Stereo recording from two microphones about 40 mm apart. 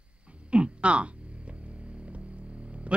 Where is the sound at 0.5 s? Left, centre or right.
Right.